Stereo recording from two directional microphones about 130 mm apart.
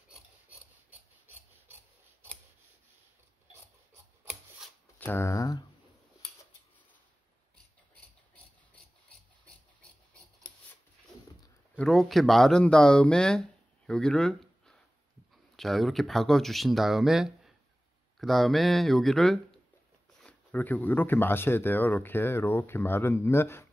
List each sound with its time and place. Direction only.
0.5 s filing: 15° right (ahead or behind)
4.9 s speech: 15° left (ahead or behind)
11.7 s speech: 5° left (ahead or behind)